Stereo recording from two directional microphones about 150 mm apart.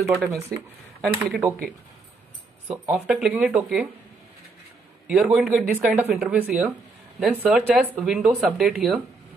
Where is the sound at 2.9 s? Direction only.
5° right (ahead or behind).